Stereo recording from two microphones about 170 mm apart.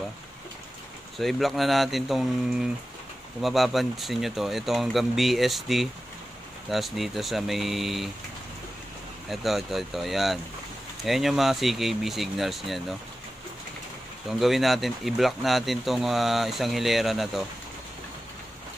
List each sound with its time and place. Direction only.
1.1 s speech: centre (ahead or behind)
9.3 s speech: centre (ahead or behind)
14.4 s speech: centre (ahead or behind)